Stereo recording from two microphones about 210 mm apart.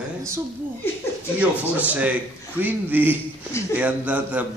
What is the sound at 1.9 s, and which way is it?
A woman's voice, 5° right (ahead or behind).